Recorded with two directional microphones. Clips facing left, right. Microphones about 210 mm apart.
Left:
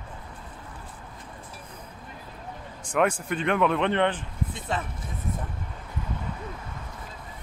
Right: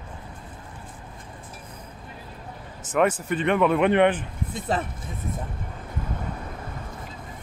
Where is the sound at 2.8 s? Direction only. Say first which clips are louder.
Right 2 dB; 5° right (ahead or behind).